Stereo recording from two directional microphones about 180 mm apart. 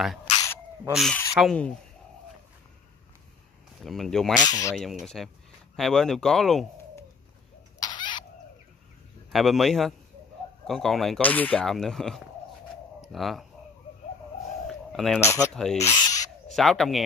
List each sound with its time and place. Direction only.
0.8 s speech: centre (ahead or behind)
3.8 s speech: centre (ahead or behind)
4.4 s speech: 20° left (ahead or behind)
5.0 s speech: centre (ahead or behind)
7.8 s a sound: 25° left (ahead or behind)
9.3 s speech: centre (ahead or behind)
14.7 s a sound: centre (ahead or behind)
15.1 s speech: 15° left (ahead or behind)
15.5 s speech: 5° left (ahead or behind)
15.8 s owl: 20° left (ahead or behind)
16.4 s speech: centre (ahead or behind)